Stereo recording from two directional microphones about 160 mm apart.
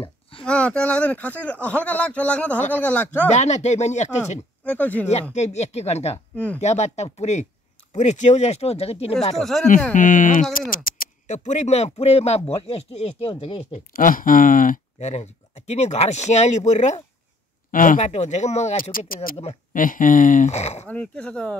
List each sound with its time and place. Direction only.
0.4 s speech: 5° left (ahead or behind)
3.3 s speech: 45° left (ahead or behind)
4.6 s speech: 10° left (ahead or behind)
5.3 s speech: 45° left (ahead or behind)
6.1 s speech: 10° left (ahead or behind)
6.6 s speech: 45° left (ahead or behind)
9.4 s speech: centre (ahead or behind)
9.9 s speech: 55° left (ahead or behind); by 13.7 s 35° left (ahead or behind)
13.7 s speech: 60° left (ahead or behind)
17.6 s speech: 55° left (ahead or behind)
18.8 s speech: 60° left (ahead or behind); by 20.8 s 45° left (ahead or behind)
20.8 s speech: 5° left (ahead or behind)